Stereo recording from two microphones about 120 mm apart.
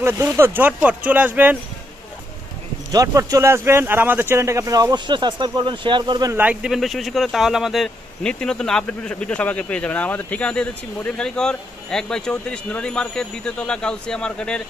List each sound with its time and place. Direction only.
0.0 s speech: 25° right (ahead or behind)
2.9 s speech: 30° right (ahead or behind)
6.3 s speech: 10° right (ahead or behind); by 14.6 s 5° left (ahead or behind)